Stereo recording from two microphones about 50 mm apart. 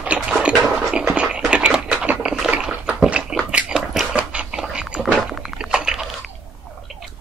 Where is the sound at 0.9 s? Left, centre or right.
Right.